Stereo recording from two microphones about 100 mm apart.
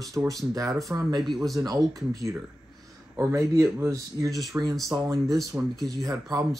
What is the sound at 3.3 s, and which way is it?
Speech, 30° right (ahead or behind).